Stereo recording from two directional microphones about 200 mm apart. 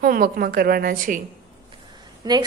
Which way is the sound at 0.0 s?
45° right (ahead or behind).